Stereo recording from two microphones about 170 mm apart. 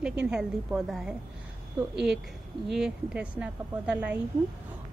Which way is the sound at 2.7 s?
5° right (ahead or behind).